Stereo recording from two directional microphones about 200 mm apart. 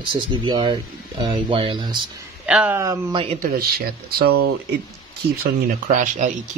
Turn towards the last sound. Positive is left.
turn(degrees=-35)  # may be behind; listen again after turning